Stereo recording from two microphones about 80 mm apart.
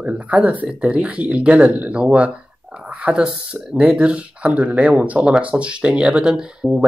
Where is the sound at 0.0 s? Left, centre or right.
Centre.